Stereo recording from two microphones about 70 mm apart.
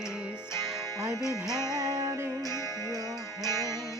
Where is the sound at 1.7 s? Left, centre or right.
Right.